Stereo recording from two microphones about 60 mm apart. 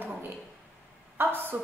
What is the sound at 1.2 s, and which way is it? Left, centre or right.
Speech, right.